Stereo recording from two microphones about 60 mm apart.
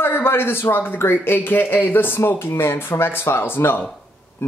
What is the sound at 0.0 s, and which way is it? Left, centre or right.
Speech, left.